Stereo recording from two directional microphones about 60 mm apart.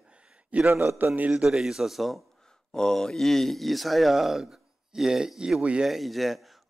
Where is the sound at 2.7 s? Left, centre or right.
Centre.